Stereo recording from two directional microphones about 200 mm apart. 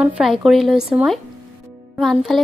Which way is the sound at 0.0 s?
Centre (ahead or behind).